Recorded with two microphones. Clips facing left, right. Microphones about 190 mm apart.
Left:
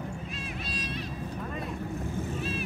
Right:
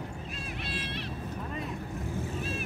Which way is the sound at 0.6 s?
65° right (ahead or behind).